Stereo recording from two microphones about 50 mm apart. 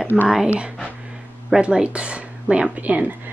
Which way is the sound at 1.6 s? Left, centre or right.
Right.